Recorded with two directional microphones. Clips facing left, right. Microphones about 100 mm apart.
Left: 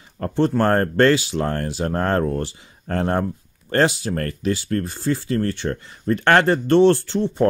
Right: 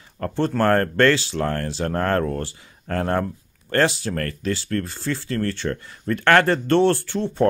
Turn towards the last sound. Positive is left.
turn(degrees=20)  # may be behind; listen again after turning